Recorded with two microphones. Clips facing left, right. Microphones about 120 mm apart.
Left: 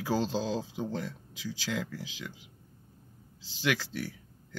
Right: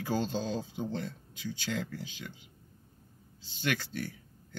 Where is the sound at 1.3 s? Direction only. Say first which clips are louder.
Left 1 dB; 90° left.